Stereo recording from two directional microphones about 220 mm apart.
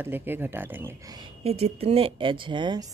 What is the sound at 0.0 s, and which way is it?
Speech, 10° right (ahead or behind).